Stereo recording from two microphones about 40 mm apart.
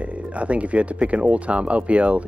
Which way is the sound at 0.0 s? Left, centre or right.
Right.